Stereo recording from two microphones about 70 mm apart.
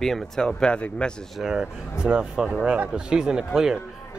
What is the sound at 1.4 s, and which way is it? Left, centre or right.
Speech, centre.